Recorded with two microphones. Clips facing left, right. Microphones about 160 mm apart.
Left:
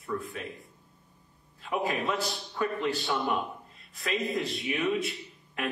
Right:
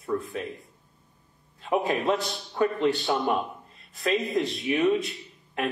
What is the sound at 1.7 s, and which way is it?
A man's voice, centre (ahead or behind).